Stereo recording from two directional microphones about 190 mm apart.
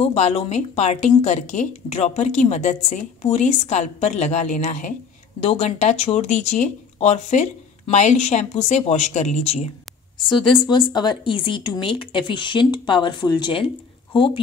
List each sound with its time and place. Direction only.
0.0 s a woman's voice: 35° left (ahead or behind)